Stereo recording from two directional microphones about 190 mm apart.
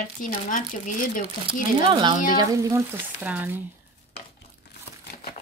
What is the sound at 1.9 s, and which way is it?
Speech, 25° right (ahead or behind).